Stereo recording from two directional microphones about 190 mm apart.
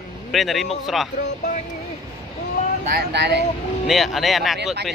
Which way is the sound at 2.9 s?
60° right (ahead or behind).